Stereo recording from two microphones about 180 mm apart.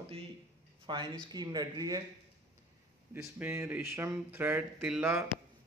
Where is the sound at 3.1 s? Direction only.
10° right (ahead or behind).